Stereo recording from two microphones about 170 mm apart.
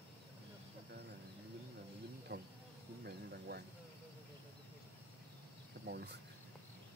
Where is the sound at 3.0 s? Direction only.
70° right (ahead or behind).